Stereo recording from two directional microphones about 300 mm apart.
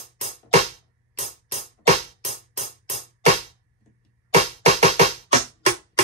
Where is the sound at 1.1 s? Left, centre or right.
Right.